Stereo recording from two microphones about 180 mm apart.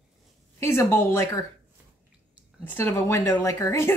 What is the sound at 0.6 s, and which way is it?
Speech, 15° left (ahead or behind).